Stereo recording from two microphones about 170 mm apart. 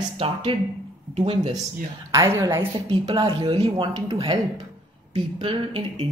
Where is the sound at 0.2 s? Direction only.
30° right (ahead or behind).